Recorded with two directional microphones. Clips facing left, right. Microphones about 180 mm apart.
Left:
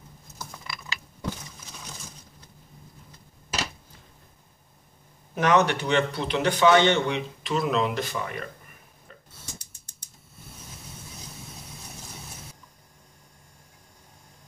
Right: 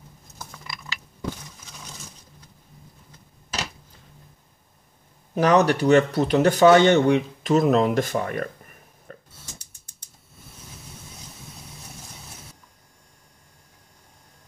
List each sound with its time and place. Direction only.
5.3 s speech: 35° right (ahead or behind)